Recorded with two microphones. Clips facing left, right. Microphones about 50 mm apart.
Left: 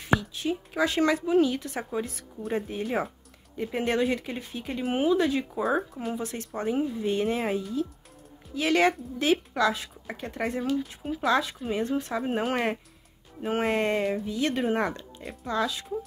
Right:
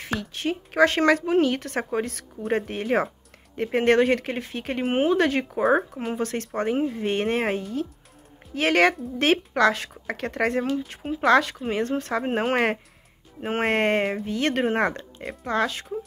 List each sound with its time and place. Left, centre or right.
0.2 s speech: right
5.9 s speech: right